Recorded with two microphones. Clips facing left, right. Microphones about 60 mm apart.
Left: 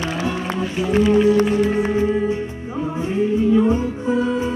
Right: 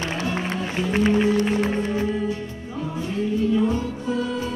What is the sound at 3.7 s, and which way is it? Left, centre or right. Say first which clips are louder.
Music: left 5 dB; left.